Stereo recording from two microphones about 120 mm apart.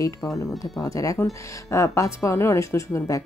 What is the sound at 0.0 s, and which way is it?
Speech, 30° left (ahead or behind).